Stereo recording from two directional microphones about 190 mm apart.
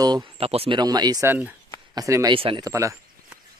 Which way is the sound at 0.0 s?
25° right (ahead or behind).